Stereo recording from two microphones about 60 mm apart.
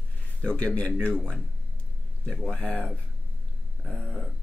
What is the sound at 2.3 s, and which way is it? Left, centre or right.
Speech, centre.